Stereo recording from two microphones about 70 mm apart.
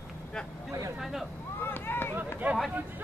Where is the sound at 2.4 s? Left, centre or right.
Right.